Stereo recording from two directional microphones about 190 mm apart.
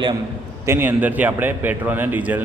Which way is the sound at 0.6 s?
10° right (ahead or behind).